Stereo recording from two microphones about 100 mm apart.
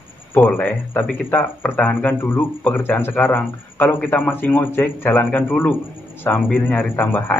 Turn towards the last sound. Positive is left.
turn(degrees=20)  # may be behind; listen again after turning